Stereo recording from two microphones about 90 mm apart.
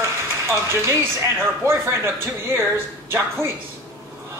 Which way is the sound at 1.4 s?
30° right (ahead or behind).